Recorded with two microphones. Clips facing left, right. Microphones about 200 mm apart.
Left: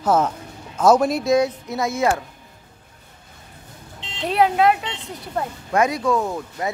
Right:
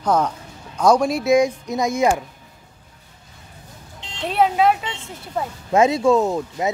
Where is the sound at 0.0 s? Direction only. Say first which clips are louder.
Left 1 dB; 5° left (ahead or behind).